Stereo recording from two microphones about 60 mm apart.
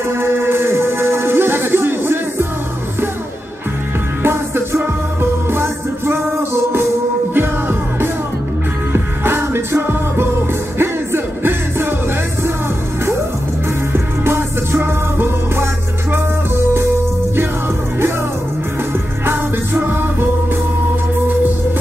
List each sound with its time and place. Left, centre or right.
0.1 s music: right
4.2 s music: right
7.3 s music: right
13.9 s music: right
19.2 s music: right